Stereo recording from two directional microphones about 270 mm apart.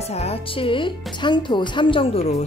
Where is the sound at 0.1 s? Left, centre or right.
Left.